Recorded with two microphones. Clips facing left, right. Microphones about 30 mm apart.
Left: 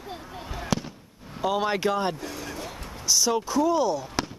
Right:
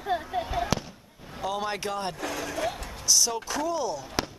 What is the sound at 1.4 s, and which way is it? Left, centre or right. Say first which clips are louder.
Speech: left 6 dB; centre.